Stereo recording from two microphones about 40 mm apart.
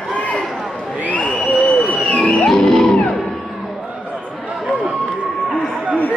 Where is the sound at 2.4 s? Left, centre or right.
Centre.